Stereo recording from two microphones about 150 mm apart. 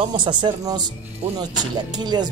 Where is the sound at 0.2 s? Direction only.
30° right (ahead or behind).